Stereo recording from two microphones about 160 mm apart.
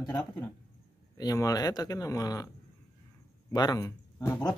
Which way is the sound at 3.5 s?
25° left (ahead or behind).